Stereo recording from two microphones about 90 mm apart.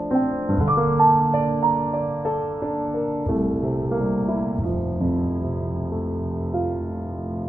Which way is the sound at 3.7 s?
25° right (ahead or behind).